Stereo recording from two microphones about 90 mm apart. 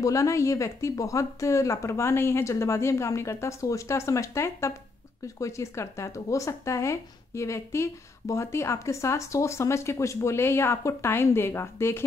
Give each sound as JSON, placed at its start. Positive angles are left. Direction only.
{"t": 0.0, "sound": "speech", "side_deg": 35}